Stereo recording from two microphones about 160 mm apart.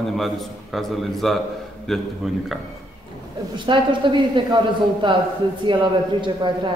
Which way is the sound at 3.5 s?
30° right (ahead or behind).